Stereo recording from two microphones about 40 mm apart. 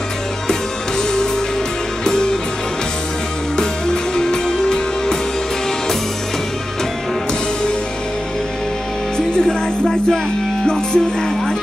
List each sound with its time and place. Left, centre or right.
2.0 s music: centre
3.5 s music: centre
10.7 s music: centre